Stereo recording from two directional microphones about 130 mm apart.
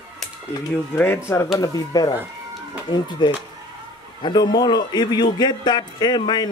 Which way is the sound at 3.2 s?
35° left (ahead or behind).